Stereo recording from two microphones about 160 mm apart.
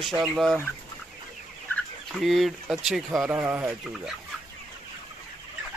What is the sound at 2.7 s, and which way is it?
Speech, 5° right (ahead or behind).